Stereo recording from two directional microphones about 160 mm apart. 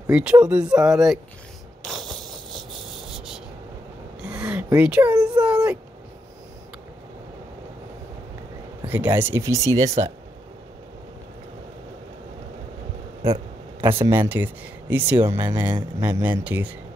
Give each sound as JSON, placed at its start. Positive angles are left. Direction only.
{"t": 0.1, "sound": "speech", "side_deg": -5}
{"t": 1.9, "sound": "mechanisms", "side_deg": 0}
{"t": 3.1, "sound": "insect", "side_deg": -5}
{"t": 4.2, "sound": "a sound", "side_deg": -5}
{"t": 5.4, "sound": "speech", "side_deg": -5}
{"t": 8.8, "sound": "speech", "side_deg": -10}
{"t": 13.2, "sound": "a sound", "side_deg": -35}
{"t": 14.0, "sound": "speech", "side_deg": -15}